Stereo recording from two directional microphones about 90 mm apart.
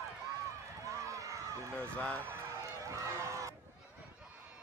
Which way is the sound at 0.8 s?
35° right (ahead or behind).